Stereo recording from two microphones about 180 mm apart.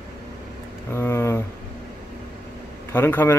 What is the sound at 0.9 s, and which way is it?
Speech, 15° left (ahead or behind).